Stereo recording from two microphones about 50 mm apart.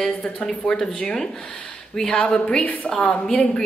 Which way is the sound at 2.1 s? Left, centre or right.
Centre.